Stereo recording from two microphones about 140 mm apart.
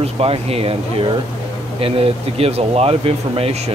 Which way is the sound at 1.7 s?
45° right (ahead or behind).